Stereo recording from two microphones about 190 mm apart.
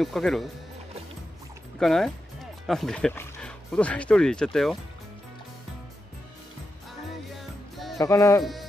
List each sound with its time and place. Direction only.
0.0 s speech: centre (ahead or behind)
1.8 s speech: centre (ahead or behind)
7.7 s music: centre (ahead or behind)
8.0 s speech: 15° left (ahead or behind)